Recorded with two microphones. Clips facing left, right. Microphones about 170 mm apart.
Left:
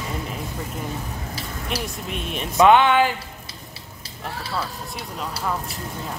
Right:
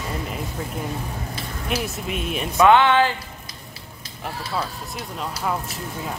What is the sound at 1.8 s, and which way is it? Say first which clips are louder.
Speech: right 2 dB; 5° right (ahead or behind).